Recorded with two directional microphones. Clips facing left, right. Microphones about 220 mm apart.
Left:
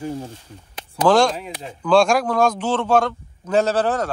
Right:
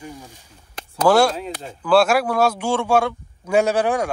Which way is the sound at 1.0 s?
10° right (ahead or behind).